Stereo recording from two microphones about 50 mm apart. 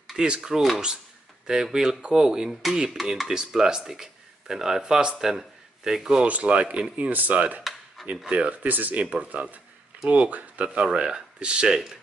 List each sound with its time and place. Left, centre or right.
0.0 s a sound: centre
0.4 s speech: centre
6.2 s speech: right
7.1 s speech: right
10.8 s speech: centre